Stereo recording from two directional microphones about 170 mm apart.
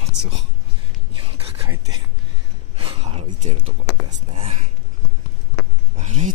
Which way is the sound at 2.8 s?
35° right (ahead or behind).